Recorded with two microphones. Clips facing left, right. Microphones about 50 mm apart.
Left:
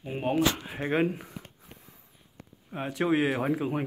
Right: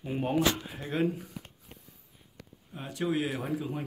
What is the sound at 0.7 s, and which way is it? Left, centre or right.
Speech, left.